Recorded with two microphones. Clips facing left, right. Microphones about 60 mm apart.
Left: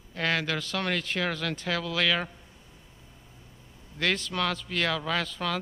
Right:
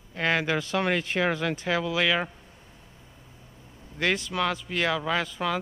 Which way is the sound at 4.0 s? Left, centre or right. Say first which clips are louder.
Right 2 dB; centre.